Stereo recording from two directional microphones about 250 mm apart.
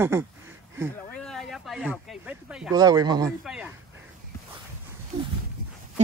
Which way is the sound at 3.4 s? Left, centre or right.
Centre.